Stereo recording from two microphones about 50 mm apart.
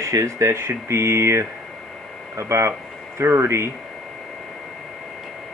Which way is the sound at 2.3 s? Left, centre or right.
Right.